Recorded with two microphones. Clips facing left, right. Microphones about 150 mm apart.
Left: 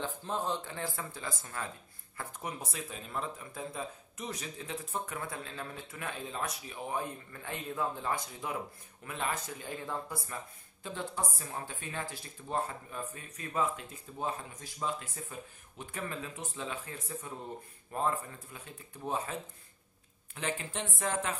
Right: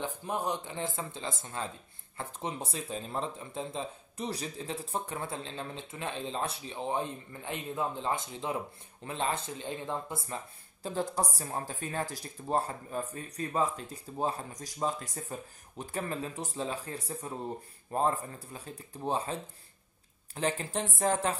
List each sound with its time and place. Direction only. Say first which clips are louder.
0.0 s speech: right 2 dB; 15° right (ahead or behind)
10.8 s speech: right 5 dB; 35° right (ahead or behind)
20.3 s speech: right 5 dB; 35° right (ahead or behind)